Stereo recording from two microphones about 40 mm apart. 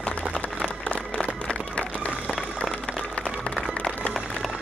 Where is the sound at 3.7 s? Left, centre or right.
Left.